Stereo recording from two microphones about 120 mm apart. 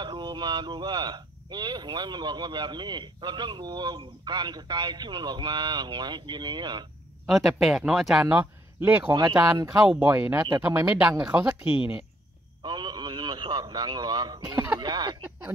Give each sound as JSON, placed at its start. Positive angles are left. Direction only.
{"t": 0.0, "sound": "speech", "side_deg": -40}
{"t": 7.2, "sound": "speech", "side_deg": 0}
{"t": 8.3, "sound": "speech", "side_deg": -15}
{"t": 9.1, "sound": "speech", "side_deg": -35}
{"t": 9.7, "sound": "speech", "side_deg": -10}
{"t": 12.6, "sound": "a man's voice", "side_deg": -35}